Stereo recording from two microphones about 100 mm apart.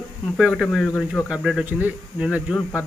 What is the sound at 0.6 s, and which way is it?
Speech, 5° left (ahead or behind).